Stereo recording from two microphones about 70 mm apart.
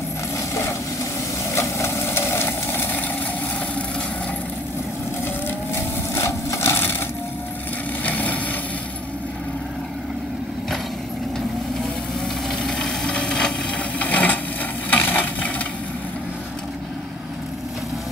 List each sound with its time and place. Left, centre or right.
1.5 s vehicle: left
6.1 s wood: left
8.0 s vehicle: left
12.4 s a sound: centre; by 15.5 s left